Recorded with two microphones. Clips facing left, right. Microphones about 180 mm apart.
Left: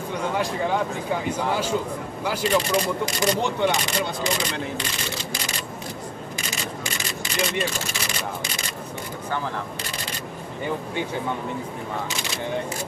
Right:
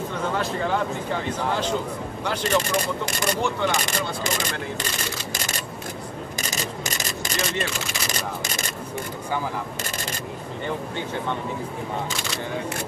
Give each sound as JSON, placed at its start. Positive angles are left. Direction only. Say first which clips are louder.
{"t": 0.1, "sound": "speech", "louder": "left 3 dB", "side_deg": 15}
{"t": 2.4, "sound": "speech", "louder": "left 2 dB", "side_deg": -45}
{"t": 3.4, "sound": "speech", "louder": "left 2 dB", "side_deg": 20}
{"t": 4.2, "sound": "speech", "louder": "left 2 dB", "side_deg": -45}
{"t": 5.3, "sound": "a sound", "louder": "even", "side_deg": -45}